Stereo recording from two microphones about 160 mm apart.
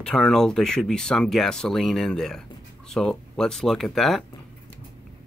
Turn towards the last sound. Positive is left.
turn(degrees=0)  # may be behind; listen again after turning